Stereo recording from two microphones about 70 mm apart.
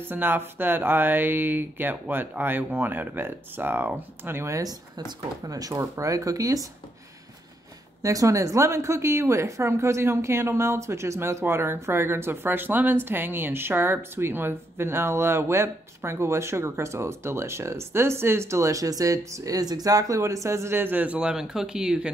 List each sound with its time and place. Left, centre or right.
0.0 s speech: right
4.6 s speech: right
8.0 s a woman's voice: right
21.2 s speech: centre